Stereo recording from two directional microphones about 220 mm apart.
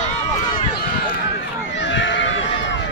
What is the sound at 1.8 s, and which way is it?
Run, 55° left (ahead or behind).